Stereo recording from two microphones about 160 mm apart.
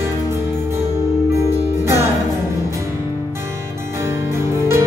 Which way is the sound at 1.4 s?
15° right (ahead or behind).